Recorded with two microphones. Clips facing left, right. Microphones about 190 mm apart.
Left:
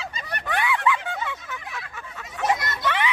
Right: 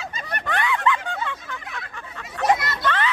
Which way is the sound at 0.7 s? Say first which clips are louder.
Right 1 dB; 5° left (ahead or behind).